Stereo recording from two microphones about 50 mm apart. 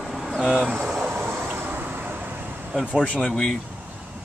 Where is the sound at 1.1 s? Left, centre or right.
Right.